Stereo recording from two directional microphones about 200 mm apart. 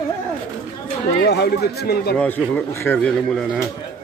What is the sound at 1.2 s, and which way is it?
Speech, 55° left (ahead or behind).